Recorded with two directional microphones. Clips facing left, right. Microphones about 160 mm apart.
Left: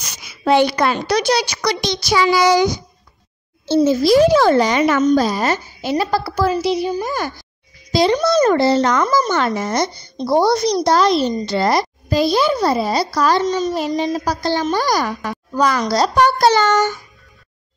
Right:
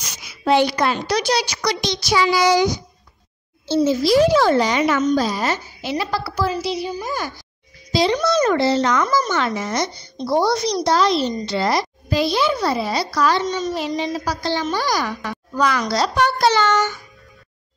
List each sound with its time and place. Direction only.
0.5 s a woman's voice: 55° left (ahead or behind)
8.2 s a child's voice: 35° left (ahead or behind)